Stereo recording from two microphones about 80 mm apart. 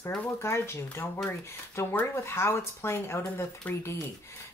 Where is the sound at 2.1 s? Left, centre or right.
Left.